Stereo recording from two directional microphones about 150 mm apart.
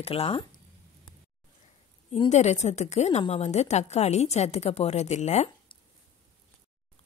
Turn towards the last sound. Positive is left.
turn(degrees=45)  # may be behind; listen again after turning